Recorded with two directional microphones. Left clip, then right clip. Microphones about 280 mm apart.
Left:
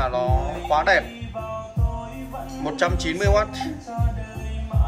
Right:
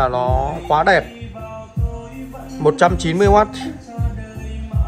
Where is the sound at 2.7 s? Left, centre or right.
Centre.